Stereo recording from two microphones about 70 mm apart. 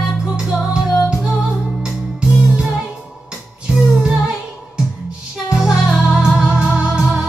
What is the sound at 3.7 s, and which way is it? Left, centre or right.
Music, centre.